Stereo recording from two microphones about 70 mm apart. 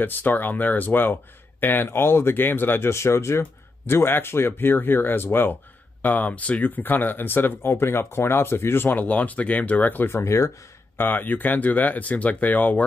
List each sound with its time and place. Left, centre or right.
0.0 s speech: left
9.0 s speech: left
10.1 s speech: left
11.0 s speech: left